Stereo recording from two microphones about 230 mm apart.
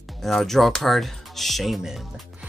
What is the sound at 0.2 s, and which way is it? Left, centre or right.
Speech, centre.